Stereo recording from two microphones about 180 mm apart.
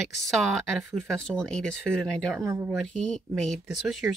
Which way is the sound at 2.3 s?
15° right (ahead or behind).